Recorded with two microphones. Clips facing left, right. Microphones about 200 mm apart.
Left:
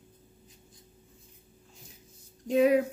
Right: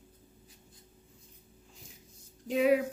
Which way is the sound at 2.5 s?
50° left (ahead or behind).